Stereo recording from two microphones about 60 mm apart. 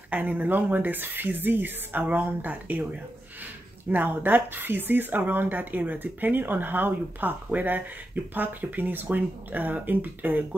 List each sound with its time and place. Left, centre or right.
0.1 s speech: right
3.9 s speech: right